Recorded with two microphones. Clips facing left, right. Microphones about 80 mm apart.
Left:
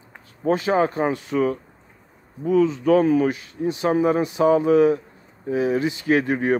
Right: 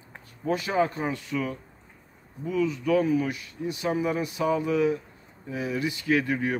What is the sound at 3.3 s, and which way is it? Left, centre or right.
Speech, left.